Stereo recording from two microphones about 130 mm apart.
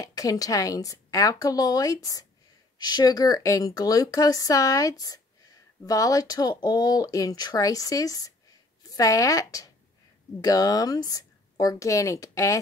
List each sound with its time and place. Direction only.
0.0 s speech: 25° left (ahead or behind)